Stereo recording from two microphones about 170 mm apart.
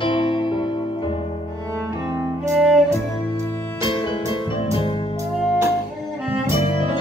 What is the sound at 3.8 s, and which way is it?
Music, 30° left (ahead or behind).